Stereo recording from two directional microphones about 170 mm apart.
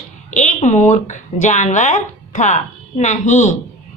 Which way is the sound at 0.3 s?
45° left (ahead or behind).